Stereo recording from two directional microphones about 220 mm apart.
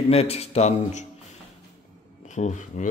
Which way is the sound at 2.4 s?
30° left (ahead or behind).